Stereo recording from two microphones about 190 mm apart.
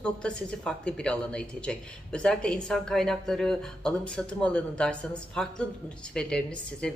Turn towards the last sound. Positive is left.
turn(degrees=5)  # may be behind; listen again after turning